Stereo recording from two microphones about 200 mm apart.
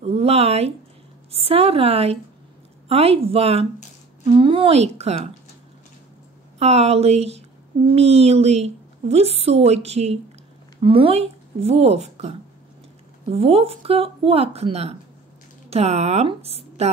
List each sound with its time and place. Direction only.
0.0 s a sound: 30° right (ahead or behind)
1.3 s speech: 30° right (ahead or behind)
6.6 s speech: 30° right (ahead or behind)